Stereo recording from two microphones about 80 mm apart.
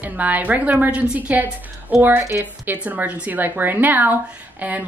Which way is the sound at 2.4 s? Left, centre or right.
Right.